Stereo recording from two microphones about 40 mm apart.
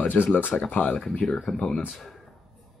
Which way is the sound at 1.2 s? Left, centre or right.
Centre.